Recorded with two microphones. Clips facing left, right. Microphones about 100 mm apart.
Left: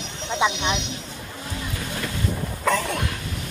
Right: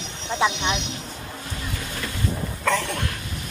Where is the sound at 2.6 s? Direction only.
5° left (ahead or behind).